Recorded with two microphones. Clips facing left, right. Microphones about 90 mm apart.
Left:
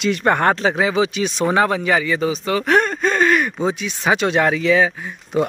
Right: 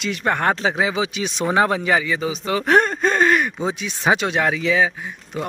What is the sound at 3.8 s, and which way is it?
Speech, 20° right (ahead or behind).